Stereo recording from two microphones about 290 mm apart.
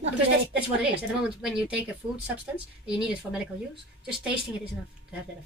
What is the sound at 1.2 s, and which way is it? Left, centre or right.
A woman's voice, centre.